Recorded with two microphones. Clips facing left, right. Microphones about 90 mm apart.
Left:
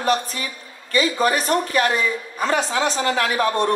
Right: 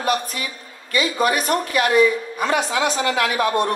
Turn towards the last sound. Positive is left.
turn(degrees=35)  # may be behind; listen again after turning